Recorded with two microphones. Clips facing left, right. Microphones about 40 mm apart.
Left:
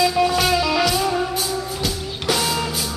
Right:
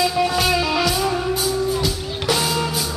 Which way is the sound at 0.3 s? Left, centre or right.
Centre.